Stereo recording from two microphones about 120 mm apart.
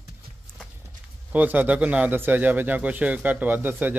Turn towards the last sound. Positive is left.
turn(degrees=-15)  # may be behind; listen again after turning